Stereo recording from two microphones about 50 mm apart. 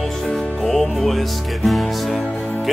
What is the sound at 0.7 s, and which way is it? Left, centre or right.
Music, centre.